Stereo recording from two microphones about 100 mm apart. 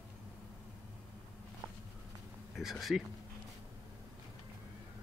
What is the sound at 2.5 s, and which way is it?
Speech, centre (ahead or behind).